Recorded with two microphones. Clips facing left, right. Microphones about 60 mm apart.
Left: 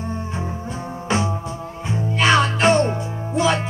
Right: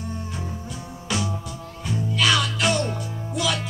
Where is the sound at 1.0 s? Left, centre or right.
Left.